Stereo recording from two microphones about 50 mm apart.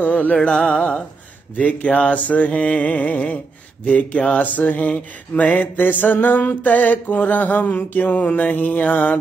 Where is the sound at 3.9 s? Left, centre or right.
Left.